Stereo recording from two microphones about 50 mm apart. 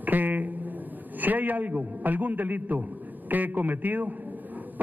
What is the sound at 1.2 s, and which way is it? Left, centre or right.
A man's voice, right.